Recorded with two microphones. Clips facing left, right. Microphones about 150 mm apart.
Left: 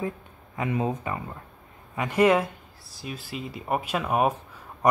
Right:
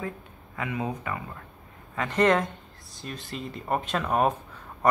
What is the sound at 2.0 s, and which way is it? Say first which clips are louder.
Speech: left 2 dB; 10° left (ahead or behind).